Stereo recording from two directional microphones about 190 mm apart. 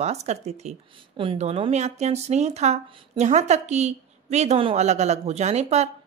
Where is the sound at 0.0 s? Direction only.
35° right (ahead or behind).